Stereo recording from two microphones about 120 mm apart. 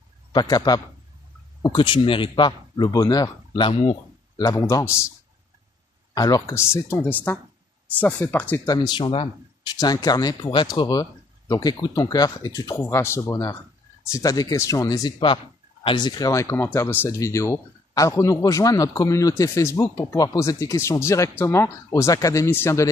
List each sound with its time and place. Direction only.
0.3 s speech: 35° left (ahead or behind)
4.4 s speech: 30° left (ahead or behind)
6.1 s speech: 30° left (ahead or behind); by 8.5 s 15° left (ahead or behind)
8.6 s speech: 35° left (ahead or behind)
9.8 s speech: 35° left (ahead or behind)